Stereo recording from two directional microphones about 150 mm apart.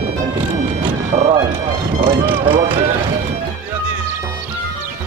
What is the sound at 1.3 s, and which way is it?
Music, 30° right (ahead or behind).